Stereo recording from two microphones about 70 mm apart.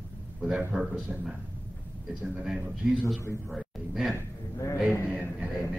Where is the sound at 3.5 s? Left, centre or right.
Centre.